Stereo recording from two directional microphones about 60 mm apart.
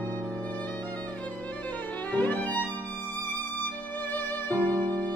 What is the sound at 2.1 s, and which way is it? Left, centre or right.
Violin, left.